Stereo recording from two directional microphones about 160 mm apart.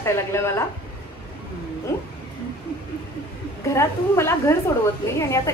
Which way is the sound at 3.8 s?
15° left (ahead or behind).